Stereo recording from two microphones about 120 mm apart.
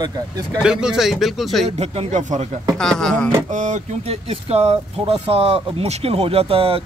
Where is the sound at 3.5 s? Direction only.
90° right.